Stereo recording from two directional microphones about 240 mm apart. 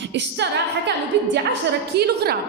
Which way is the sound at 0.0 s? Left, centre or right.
Right.